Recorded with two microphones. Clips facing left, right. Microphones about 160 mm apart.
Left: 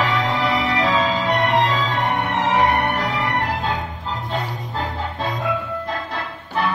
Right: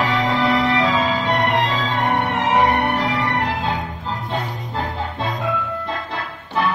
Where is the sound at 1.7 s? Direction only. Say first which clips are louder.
Even; 20° right (ahead or behind).